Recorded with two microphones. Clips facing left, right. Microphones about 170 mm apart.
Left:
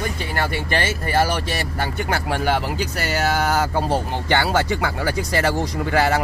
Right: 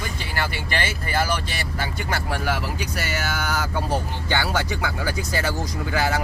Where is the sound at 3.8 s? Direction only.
75° left (ahead or behind).